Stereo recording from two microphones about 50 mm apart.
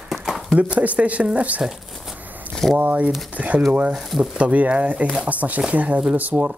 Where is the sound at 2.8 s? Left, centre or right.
Right.